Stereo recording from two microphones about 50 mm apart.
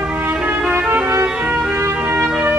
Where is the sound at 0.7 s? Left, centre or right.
Right.